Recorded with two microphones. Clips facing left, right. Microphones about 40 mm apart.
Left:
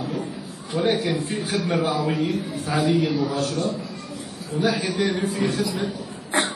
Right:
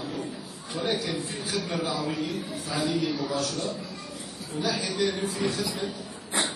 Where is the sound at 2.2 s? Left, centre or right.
Centre.